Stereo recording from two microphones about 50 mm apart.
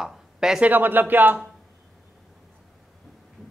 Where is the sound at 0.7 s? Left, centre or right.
Right.